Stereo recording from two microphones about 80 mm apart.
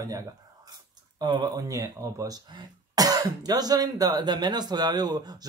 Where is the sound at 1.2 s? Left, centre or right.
Right.